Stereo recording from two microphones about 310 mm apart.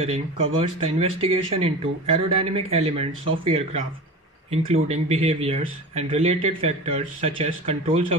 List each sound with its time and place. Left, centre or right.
0.0 s speech: centre
4.8 s speech: centre